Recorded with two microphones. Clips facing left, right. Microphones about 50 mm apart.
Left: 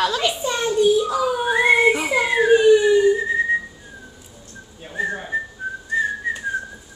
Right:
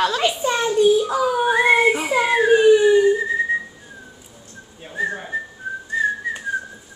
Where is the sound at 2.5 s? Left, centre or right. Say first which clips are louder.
Even; right.